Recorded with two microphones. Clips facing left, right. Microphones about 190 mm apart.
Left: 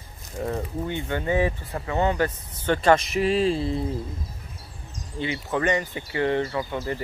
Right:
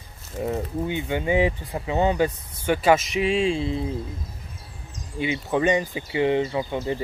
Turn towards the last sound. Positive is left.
turn(degrees=-20)  # may be behind; listen again after turning